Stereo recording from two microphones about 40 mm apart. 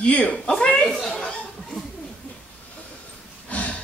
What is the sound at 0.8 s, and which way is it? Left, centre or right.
Speech, centre.